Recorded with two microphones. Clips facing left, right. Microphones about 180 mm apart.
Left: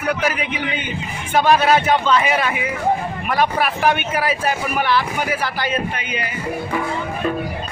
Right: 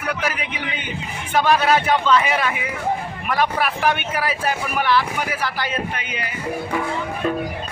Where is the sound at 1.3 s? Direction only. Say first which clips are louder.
Left 2 dB; 25° left (ahead or behind).